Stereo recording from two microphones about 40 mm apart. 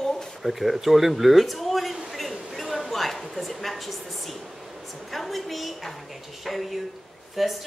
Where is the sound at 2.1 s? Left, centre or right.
Centre.